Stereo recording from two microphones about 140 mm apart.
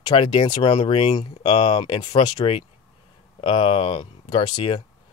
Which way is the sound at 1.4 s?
35° left (ahead or behind).